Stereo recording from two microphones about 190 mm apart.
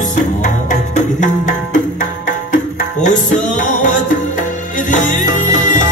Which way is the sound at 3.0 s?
40° left (ahead or behind).